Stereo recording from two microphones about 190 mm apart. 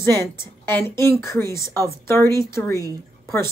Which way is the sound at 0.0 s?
15° left (ahead or behind).